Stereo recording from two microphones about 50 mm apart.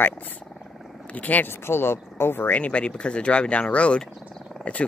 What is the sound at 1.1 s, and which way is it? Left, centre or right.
Speech, left.